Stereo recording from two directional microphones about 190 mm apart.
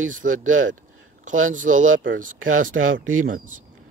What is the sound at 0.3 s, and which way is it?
Speech, 90° right.